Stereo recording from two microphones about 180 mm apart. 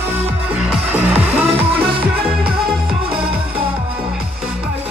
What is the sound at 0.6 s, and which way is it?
Music, 10° right (ahead or behind).